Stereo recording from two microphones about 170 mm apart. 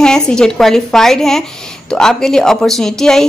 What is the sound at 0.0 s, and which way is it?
Speech, 5° left (ahead or behind).